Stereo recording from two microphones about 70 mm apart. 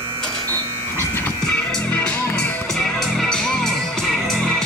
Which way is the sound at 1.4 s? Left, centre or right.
Centre.